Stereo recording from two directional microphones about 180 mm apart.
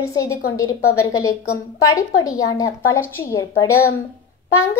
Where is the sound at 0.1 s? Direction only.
15° left (ahead or behind).